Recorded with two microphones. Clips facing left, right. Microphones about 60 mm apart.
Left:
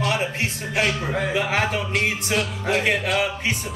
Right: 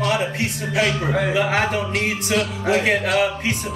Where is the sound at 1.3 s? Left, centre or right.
Right.